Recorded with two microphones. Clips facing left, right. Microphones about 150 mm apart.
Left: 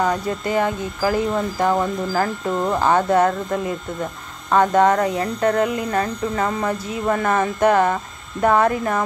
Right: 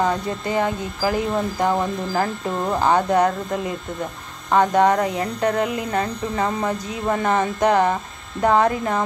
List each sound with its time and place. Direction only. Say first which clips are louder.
0.0 s speech: left 1 dB; 20° right (ahead or behind)